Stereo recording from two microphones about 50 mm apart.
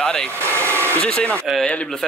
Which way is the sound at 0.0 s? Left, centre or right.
Centre.